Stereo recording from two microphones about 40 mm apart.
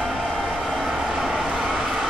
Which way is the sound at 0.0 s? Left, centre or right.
Centre.